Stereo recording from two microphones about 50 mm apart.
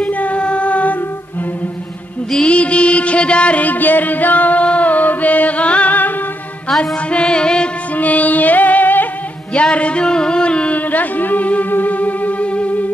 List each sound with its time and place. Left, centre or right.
0.0 s music: left
2.4 s music: left
7.9 s music: left
9.5 s a sound: left
10.9 s music: left